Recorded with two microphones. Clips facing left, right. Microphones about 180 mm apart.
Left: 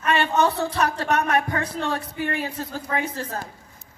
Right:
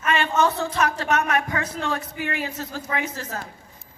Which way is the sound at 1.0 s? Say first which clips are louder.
Left 1 dB; 35° left (ahead or behind).